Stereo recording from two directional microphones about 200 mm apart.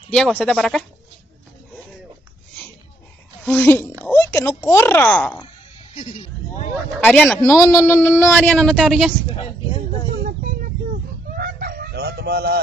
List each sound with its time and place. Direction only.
0.1 s speech: 5° left (ahead or behind)
3.4 s speech: 10° left (ahead or behind)
5.9 s speech: 30° left (ahead or behind)
7.0 s speech: 5° left (ahead or behind)
10.2 s a sound: 45° right (ahead or behind)
11.3 s fowl: 50° right (ahead or behind)